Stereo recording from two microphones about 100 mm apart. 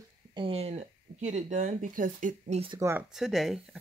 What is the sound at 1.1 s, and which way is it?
Speech, 55° right (ahead or behind).